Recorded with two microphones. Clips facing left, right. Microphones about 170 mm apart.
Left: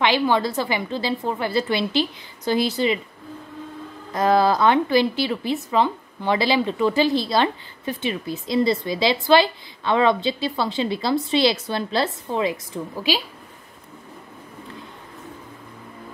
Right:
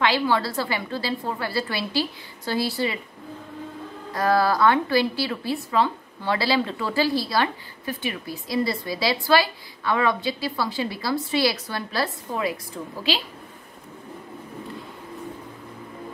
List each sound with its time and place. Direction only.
0.0 s a woman's voice: 20° left (ahead or behind)
4.1 s a woman's voice: 20° left (ahead or behind)